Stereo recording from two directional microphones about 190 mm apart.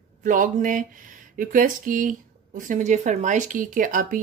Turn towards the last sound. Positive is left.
turn(degrees=-45)  # may be behind; listen again after turning